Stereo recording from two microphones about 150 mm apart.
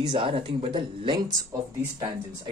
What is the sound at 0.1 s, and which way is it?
Speech, 35° right (ahead or behind).